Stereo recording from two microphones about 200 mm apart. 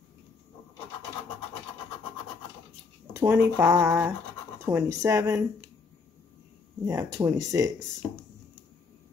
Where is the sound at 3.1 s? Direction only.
10° right (ahead or behind).